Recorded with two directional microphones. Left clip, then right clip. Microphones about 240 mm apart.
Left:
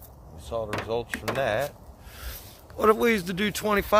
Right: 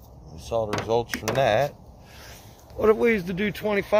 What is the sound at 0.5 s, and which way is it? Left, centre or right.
Speech, centre.